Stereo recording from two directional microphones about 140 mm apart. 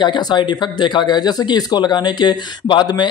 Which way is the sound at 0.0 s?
35° left (ahead or behind).